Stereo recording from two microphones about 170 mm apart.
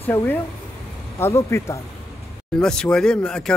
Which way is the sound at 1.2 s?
15° left (ahead or behind).